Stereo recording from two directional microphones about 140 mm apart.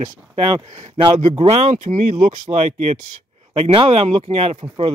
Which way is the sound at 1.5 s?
65° right (ahead or behind).